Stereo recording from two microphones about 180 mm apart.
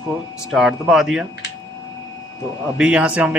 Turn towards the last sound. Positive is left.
turn(degrees=-5)  # may be behind; listen again after turning